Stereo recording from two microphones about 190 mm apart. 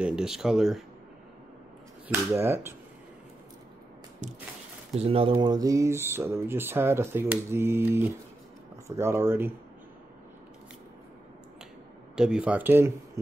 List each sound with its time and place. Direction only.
0.0 s speech: 5° right (ahead or behind)
2.0 s speech: 15° right (ahead or behind)
4.2 s a sound: 40° right (ahead or behind)
4.9 s speech: 30° right (ahead or behind); by 9.5 s 10° right (ahead or behind)
12.2 s speech: 5° right (ahead or behind)